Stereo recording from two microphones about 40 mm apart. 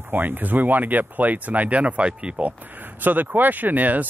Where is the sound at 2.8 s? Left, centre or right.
Right.